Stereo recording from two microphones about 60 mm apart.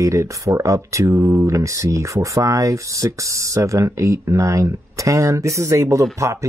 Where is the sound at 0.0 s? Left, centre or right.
Right.